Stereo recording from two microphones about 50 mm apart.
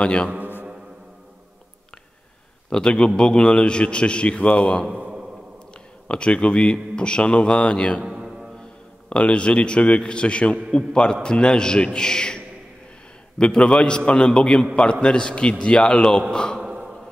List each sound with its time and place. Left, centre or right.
0.0 s a man's voice: left
2.7 s a man's voice: centre
4.9 s a sound: right
6.0 s a man's voice: centre
8.0 s music: centre
9.1 s a man's voice: left
16.6 s a sound: centre